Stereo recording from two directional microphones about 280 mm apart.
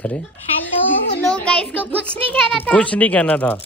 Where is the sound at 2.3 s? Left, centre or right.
Centre.